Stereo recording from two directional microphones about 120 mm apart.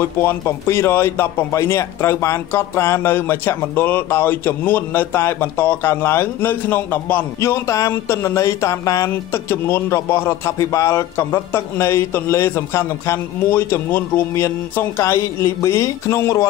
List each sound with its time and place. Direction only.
0.2 s a man's voice: 20° left (ahead or behind)